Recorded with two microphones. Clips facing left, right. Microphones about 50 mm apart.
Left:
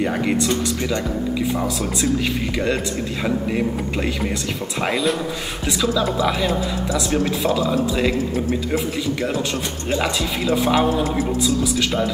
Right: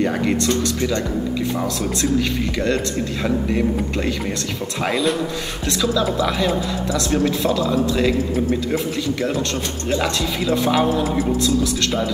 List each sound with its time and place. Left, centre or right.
0.0 s speech: centre